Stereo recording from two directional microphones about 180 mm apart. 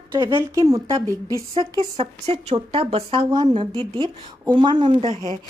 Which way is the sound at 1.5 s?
30° right (ahead or behind).